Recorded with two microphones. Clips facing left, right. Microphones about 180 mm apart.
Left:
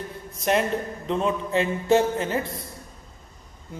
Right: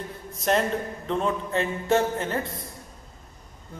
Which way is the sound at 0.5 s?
10° left (ahead or behind).